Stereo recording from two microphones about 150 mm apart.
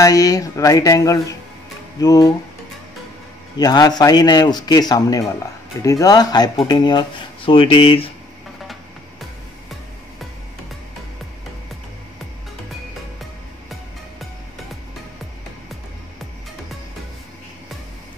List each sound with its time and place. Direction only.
0.0 s a man's voice: 25° left (ahead or behind)
3.5 s a man's voice: 25° left (ahead or behind)